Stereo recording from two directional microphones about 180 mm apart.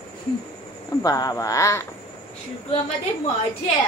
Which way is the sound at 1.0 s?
20° left (ahead or behind).